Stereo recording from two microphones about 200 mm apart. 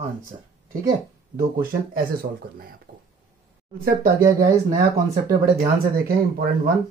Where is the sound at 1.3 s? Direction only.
45° right (ahead or behind).